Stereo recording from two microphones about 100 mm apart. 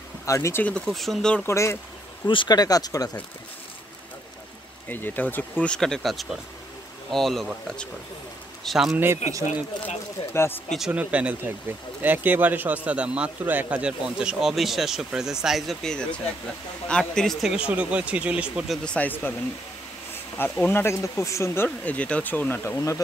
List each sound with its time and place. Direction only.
0.2 s speech: 30° left (ahead or behind)
0.7 s speech: 5° left (ahead or behind)
1.4 s speech: 30° left (ahead or behind)
2.2 s speech: 50° left (ahead or behind)
4.8 s speech: 20° left (ahead or behind)
8.6 s speech: 5° right (ahead or behind)
8.9 s speech: 20° right (ahead or behind)
10.3 s speech: 25° left (ahead or behind)
10.9 s a man's voice: 15° right (ahead or behind); by 17.4 s 5° left (ahead or behind)
17.4 s a man's voice: 10° right (ahead or behind)
18.9 s speech: 15° left (ahead or behind)
20.3 s speech: 20° left (ahead or behind)
21.6 s speech: 15° left (ahead or behind)